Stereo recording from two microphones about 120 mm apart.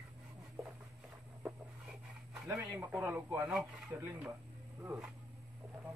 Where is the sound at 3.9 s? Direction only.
15° right (ahead or behind).